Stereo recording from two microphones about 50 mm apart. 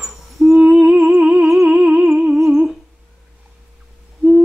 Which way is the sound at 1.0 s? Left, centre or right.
Centre.